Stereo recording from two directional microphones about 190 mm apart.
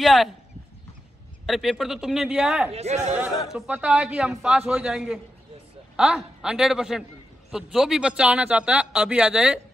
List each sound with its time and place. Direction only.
0.0 s a man's voice: centre (ahead or behind)
1.4 s a man's voice: centre (ahead or behind)
2.7 s speech: 35° right (ahead or behind)
3.4 s a man's voice: 5° right (ahead or behind)